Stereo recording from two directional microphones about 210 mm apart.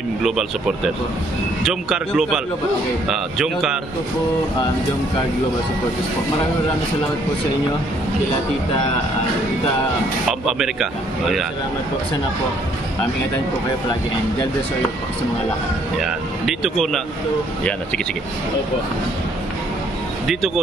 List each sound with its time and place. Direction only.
0.2 s speech: centre (ahead or behind)
10.4 s speech: centre (ahead or behind)
16.4 s speech: centre (ahead or behind)